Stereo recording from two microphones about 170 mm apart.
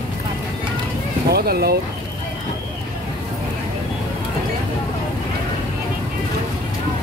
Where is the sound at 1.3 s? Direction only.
65° right (ahead or behind).